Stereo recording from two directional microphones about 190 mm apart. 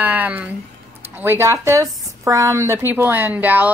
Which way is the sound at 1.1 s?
10° right (ahead or behind).